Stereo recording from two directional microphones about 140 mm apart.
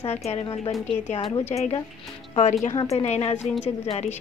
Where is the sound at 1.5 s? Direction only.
50° left (ahead or behind).